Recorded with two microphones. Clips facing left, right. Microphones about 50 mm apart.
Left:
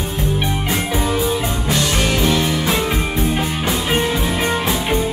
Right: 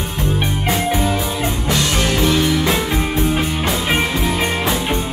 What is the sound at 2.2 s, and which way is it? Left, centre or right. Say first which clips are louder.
Music: right 3 dB; centre.